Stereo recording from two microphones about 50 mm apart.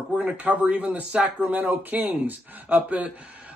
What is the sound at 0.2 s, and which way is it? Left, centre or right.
Speech, right.